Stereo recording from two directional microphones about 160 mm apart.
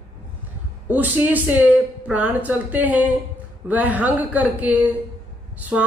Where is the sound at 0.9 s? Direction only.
10° right (ahead or behind).